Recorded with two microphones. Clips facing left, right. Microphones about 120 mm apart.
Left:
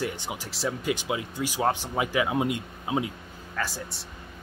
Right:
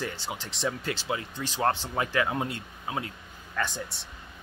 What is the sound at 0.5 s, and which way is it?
Speech, 5° left (ahead or behind).